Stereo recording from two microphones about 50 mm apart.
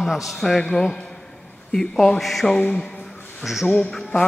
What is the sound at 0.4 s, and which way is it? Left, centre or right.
Speech, centre.